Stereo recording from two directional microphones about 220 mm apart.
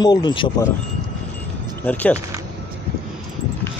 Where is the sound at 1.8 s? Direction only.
5° left (ahead or behind).